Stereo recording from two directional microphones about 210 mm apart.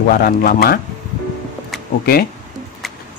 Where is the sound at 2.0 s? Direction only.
45° left (ahead or behind).